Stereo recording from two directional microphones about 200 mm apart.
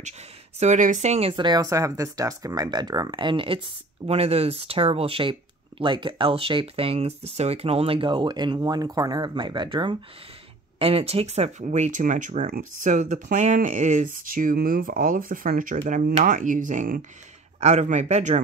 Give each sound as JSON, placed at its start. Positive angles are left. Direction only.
{"t": 0.6, "sound": "speech", "side_deg": -40}
{"t": 1.3, "sound": "speech", "side_deg": -20}